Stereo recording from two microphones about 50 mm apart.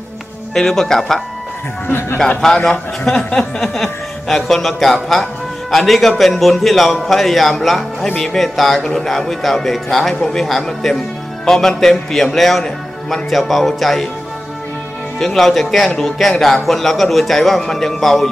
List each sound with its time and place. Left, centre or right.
0.6 s speech: centre
1.9 s speech: left
2.4 s speech: centre
15.1 s speech: centre